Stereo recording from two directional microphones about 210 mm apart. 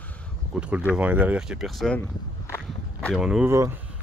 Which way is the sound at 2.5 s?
5° left (ahead or behind).